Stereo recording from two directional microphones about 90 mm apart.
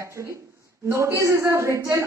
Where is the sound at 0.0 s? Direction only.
35° right (ahead or behind).